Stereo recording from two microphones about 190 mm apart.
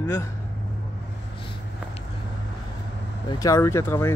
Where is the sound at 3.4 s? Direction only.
15° left (ahead or behind).